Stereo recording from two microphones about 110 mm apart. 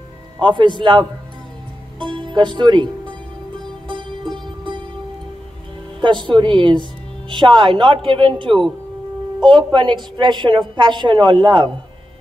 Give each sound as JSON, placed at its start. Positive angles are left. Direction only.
{"t": 0.4, "sound": "a woman's voice", "side_deg": -45}
{"t": 2.0, "sound": "music", "side_deg": -45}
{"t": 5.9, "sound": "a woman's voice", "side_deg": -45}